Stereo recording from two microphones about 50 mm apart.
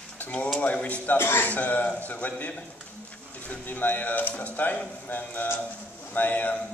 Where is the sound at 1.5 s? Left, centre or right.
Left.